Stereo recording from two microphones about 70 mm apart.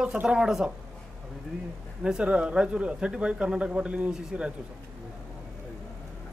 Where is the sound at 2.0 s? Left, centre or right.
Centre.